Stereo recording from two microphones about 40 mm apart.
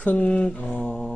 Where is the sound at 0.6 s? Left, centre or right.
Left.